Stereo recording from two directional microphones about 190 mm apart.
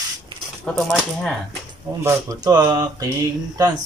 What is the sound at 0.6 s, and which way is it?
Speech, 5° left (ahead or behind).